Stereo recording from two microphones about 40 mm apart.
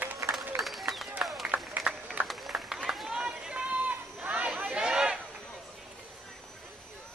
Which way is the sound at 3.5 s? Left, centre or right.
Right.